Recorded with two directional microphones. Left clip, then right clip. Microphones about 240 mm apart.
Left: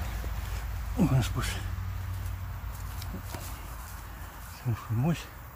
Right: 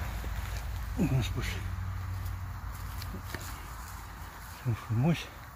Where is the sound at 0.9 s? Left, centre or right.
Centre.